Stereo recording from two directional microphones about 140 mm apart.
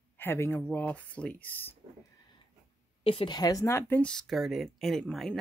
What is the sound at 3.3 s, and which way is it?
Speech, 25° left (ahead or behind).